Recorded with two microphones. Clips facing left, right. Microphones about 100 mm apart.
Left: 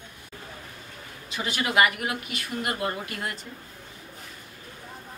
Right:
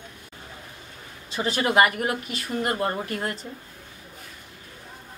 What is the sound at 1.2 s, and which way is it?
Speech, 35° right (ahead or behind).